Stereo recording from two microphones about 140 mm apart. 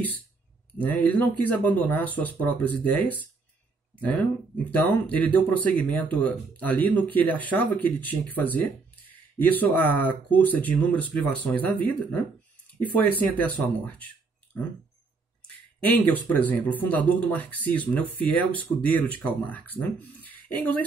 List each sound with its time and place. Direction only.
1.0 s speech: 10° left (ahead or behind)
13.9 s a sound: 10° left (ahead or behind)
15.8 s speech: 10° left (ahead or behind)